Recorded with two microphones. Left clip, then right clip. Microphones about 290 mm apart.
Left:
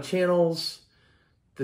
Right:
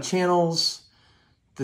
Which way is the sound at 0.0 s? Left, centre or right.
Centre.